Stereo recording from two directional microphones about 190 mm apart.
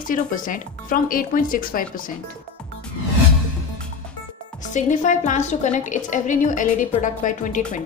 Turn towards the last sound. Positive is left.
turn(degrees=40)  # may be behind; listen again after turning